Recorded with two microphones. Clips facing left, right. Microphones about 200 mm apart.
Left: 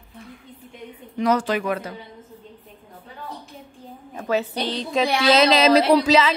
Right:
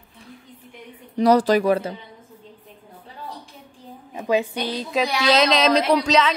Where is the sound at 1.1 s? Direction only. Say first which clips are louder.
Right 5 dB; 35° right (ahead or behind).